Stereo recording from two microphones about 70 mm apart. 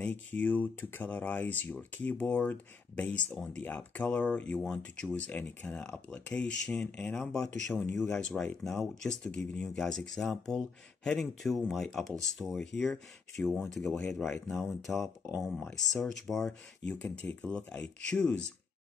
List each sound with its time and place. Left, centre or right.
0.0 s speech: left; by 16.5 s centre
16.8 s speech: centre